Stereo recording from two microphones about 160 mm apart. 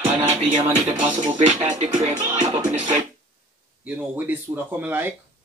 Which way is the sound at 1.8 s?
45° right (ahead or behind).